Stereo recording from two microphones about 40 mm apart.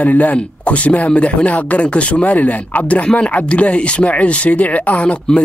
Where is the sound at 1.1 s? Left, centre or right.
Left.